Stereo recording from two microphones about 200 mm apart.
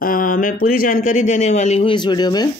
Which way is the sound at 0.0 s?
45° left (ahead or behind).